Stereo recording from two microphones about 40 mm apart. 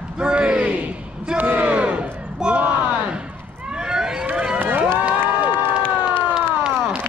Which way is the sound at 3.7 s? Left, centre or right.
Centre.